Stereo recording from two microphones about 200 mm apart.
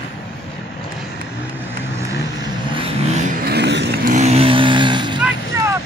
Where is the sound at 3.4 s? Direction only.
55° right (ahead or behind); by 5.2 s 25° right (ahead or behind).